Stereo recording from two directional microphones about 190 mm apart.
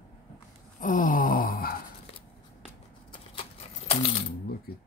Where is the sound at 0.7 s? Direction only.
45° left (ahead or behind).